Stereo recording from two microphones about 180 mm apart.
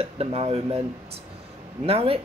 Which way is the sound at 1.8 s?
35° right (ahead or behind).